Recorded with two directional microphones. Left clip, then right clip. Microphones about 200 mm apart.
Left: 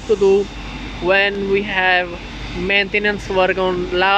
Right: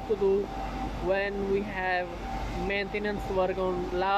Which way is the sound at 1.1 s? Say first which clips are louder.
Left 13 dB; 10° left (ahead or behind).